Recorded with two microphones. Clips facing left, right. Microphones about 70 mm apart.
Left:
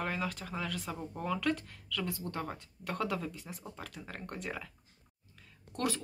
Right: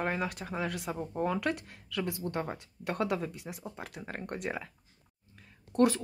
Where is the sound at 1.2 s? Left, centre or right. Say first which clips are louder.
Right 2 dB; right.